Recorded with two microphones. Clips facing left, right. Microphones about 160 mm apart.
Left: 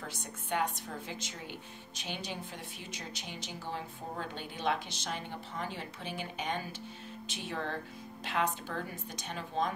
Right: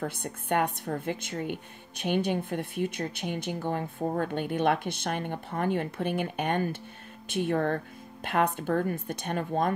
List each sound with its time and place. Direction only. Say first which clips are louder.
0.0 s speech: right 9 dB; 55° right (ahead or behind)